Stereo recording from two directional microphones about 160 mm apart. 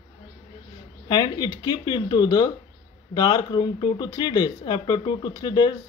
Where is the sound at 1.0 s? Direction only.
25° left (ahead or behind).